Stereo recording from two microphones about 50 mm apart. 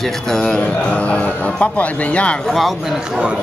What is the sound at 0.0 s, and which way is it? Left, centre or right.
Speech, centre.